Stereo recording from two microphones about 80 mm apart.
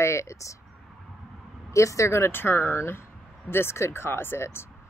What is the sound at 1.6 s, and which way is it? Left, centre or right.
Speech, left.